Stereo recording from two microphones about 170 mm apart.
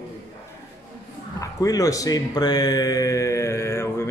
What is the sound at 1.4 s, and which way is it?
Speech, 20° left (ahead or behind).